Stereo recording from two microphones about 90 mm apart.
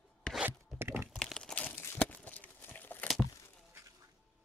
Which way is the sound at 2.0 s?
15° left (ahead or behind).